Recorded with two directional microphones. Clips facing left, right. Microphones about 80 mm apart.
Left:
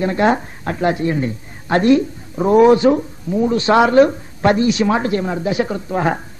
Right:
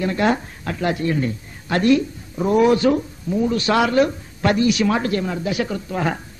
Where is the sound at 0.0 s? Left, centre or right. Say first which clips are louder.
Left 4 dB; left.